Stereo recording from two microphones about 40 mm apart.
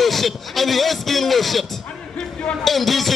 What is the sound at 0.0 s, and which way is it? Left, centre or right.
A man's voice, centre.